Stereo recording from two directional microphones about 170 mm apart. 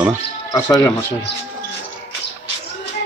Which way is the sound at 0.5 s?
15° left (ahead or behind).